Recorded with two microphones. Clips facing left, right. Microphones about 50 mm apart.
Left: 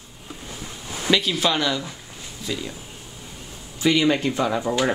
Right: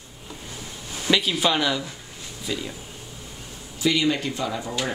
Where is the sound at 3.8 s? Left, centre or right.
Left.